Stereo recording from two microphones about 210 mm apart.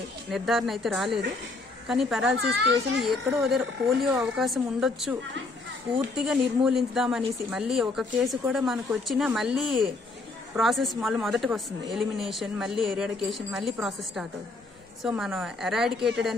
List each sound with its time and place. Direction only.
0.3 s speech: centre (ahead or behind)
2.3 s a child's voice: 55° right (ahead or behind)
3.0 s speech: centre (ahead or behind)
6.1 s speech: 5° right (ahead or behind)